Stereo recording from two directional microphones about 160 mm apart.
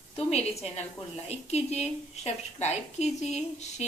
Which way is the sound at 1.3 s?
40° left (ahead or behind).